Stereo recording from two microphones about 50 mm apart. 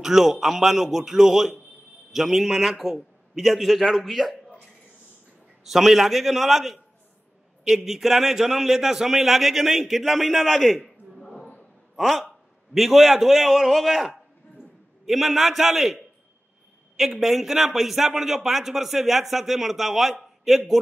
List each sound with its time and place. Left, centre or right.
0.0 s a man's voice: centre
2.7 s a man's voice: centre
5.6 s a man's voice: centre
10.8 s a sound: centre
12.0 s a man's voice: centre